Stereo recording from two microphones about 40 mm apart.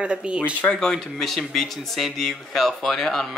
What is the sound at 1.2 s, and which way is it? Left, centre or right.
Speech, centre.